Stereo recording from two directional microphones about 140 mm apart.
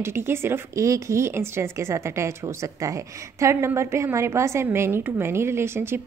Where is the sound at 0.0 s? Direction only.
20° right (ahead or behind).